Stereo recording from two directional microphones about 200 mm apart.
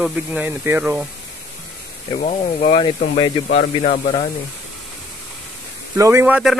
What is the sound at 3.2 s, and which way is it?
Speech, 65° left (ahead or behind).